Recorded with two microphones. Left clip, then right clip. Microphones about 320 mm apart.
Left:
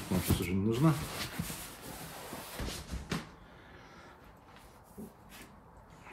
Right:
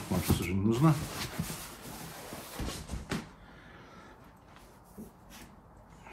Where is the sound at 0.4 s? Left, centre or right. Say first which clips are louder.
Right 2 dB; centre.